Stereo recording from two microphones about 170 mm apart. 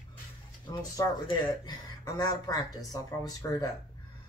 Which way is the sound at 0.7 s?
20° left (ahead or behind).